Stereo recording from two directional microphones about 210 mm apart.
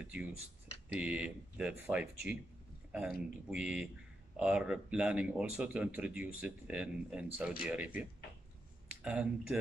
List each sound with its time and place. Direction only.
0.0 s speech: 5° right (ahead or behind)